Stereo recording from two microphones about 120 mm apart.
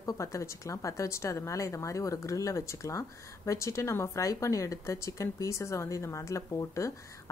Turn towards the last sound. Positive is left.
turn(degrees=25)  # may be behind; listen again after turning